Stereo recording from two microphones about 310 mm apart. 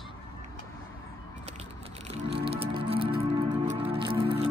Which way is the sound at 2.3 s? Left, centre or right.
Centre.